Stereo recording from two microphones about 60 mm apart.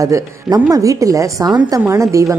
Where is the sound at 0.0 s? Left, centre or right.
Right.